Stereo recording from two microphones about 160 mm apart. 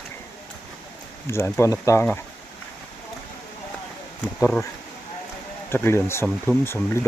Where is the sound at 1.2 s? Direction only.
15° left (ahead or behind).